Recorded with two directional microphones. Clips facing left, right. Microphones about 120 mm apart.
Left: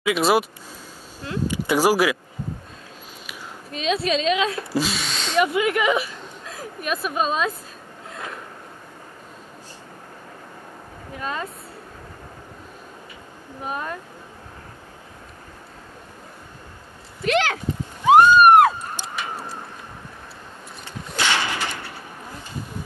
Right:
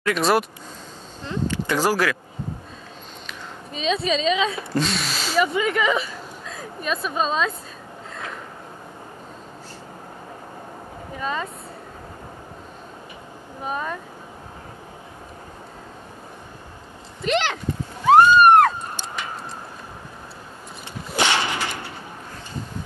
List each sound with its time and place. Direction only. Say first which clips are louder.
0.0 s speech: left 1 dB; 5° left (ahead or behind)
3.3 s a woman's voice: even; 5° left (ahead or behind)
11.1 s speech: right 2 dB; centre (ahead or behind)
13.7 s speech: right 2 dB; centre (ahead or behind)
18.0 s a sound: even; 10° left (ahead or behind)
21.2 s whip: right 2 dB; 20° right (ahead or behind)